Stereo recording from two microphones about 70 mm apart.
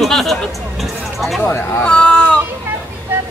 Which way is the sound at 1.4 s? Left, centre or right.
Left.